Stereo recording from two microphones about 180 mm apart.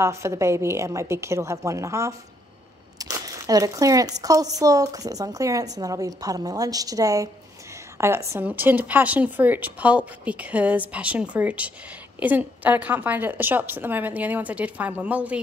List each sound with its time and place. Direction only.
0.0 s speech: 15° right (ahead or behind)
3.0 s a sound: 20° right (ahead or behind)
4.2 s a woman's voice: 20° right (ahead or behind)